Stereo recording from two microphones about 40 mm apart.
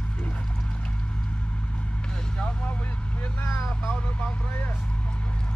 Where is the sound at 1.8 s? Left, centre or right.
Left.